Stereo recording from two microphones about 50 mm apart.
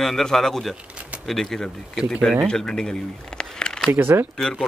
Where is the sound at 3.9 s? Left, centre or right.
Right.